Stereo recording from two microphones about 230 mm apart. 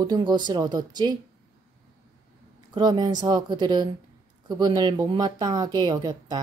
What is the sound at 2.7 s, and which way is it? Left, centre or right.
Speech, centre.